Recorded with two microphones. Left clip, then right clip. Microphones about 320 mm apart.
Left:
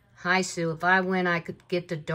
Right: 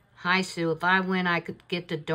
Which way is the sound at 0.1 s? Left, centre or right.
Centre.